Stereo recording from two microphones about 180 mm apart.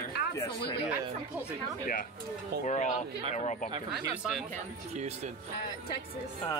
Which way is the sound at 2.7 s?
40° left (ahead or behind).